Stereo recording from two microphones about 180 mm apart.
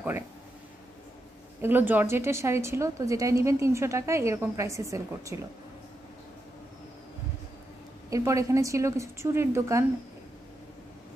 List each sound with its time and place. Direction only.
1.6 s a woman's voice: 10° right (ahead or behind)
8.1 s a woman's voice: 15° right (ahead or behind)